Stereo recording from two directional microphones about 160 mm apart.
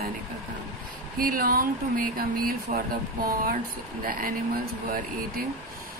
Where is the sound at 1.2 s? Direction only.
65° right (ahead or behind).